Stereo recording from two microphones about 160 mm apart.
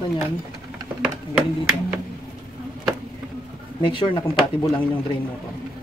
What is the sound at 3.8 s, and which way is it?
Speech, 30° left (ahead or behind).